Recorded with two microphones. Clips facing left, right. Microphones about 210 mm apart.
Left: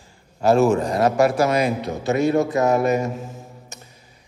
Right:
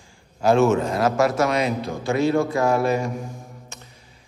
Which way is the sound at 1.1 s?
30° left (ahead or behind).